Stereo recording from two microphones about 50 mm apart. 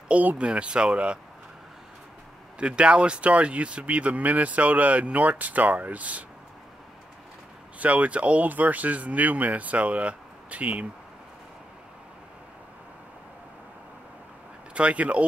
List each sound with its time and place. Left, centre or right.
0.1 s speech: right
0.5 s speech: right
2.6 s speech: right
7.8 s speech: right
14.7 s speech: right